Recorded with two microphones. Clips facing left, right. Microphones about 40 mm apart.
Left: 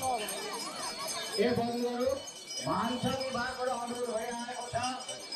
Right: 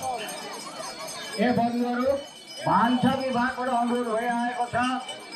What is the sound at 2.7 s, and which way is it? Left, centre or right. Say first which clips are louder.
Speech: right 11 dB; right.